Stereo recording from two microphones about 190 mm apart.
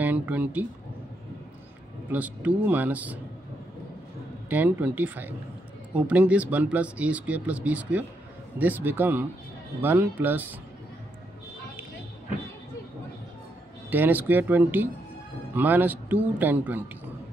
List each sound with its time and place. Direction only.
0.0 s speech: 10° right (ahead or behind)
2.0 s speech: 10° right (ahead or behind)
4.5 s speech: 10° right (ahead or behind)
13.8 s speech: 10° right (ahead or behind)